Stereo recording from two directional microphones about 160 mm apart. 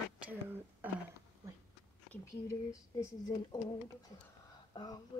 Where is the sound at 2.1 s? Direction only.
20° left (ahead or behind).